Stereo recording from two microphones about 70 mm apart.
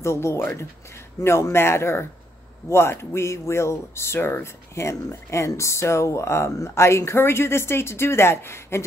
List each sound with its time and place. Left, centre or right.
0.0 s speech: left